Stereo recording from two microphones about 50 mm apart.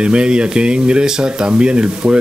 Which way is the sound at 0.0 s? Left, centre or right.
Centre.